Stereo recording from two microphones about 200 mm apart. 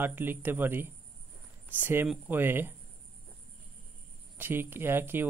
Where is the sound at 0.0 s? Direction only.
10° right (ahead or behind).